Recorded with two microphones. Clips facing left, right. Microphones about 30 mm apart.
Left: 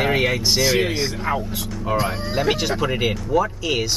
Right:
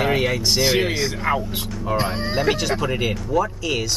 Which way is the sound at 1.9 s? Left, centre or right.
Right.